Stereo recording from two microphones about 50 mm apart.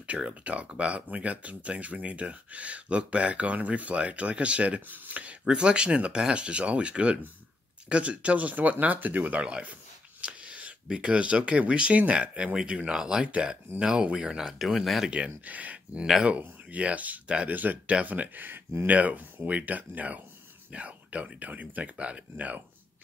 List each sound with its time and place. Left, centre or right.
0.0 s speech: right
4.8 s speech: right
5.4 s speech: centre
14.6 s speech: centre
15.0 s speech: right
18.9 s speech: right